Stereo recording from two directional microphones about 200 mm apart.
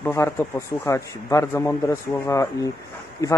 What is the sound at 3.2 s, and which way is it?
Speech, 15° left (ahead or behind).